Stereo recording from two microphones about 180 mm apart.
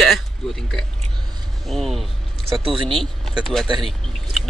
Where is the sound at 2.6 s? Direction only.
30° right (ahead or behind).